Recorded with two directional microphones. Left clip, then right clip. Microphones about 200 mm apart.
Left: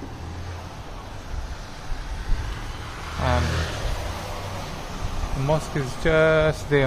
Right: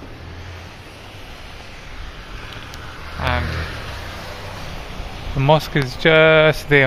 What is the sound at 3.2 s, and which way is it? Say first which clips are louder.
Vehicle: right 3 dB; 5° left (ahead or behind).